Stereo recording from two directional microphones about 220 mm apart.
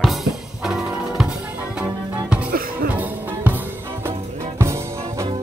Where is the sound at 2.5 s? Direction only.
40° right (ahead or behind).